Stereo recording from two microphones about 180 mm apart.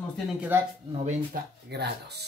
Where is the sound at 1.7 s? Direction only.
65° right (ahead or behind).